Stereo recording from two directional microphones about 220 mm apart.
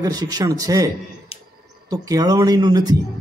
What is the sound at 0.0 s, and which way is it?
Speech, 15° right (ahead or behind).